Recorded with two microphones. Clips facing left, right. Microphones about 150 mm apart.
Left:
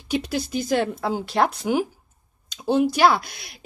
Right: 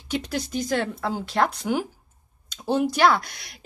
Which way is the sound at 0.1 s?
10° left (ahead or behind).